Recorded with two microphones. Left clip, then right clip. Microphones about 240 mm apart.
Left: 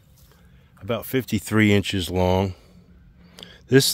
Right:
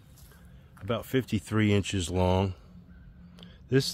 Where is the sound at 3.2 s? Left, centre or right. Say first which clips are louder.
Left 9 dB; left.